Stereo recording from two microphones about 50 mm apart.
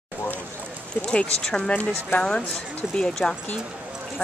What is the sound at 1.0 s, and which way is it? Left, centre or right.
Speech, left.